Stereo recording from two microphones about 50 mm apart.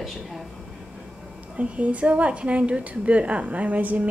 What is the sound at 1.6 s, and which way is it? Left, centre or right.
A woman's voice, right.